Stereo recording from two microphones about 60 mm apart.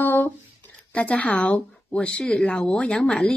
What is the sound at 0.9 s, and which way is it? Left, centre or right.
Speech, left.